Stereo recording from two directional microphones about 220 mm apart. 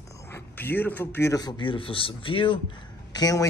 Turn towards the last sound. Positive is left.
turn(degrees=15)  # may be behind; listen again after turning